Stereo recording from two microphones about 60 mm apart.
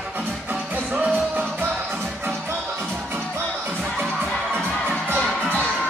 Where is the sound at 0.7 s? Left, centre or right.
Right.